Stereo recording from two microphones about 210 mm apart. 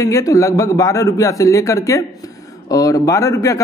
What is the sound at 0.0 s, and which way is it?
A man's voice, 15° left (ahead or behind).